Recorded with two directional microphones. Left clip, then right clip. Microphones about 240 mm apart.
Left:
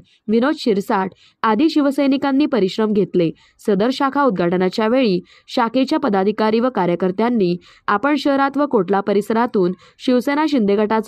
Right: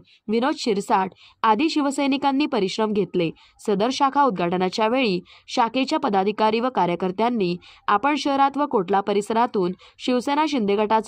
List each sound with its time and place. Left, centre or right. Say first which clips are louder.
0.3 s a woman's voice: left 5 dB; centre